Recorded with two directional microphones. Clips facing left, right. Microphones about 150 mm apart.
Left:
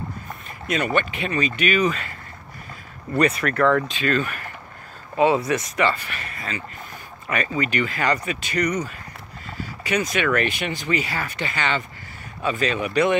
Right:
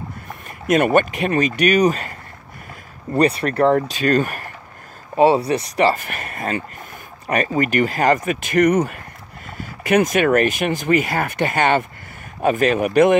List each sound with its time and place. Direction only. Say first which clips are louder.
0.7 s speech: right 8 dB; 50° right (ahead or behind)
3.2 s speech: right 3 dB; 35° right (ahead or behind)
5.1 s speech: right 4 dB; 35° right (ahead or behind); by 13.2 s 50° right (ahead or behind)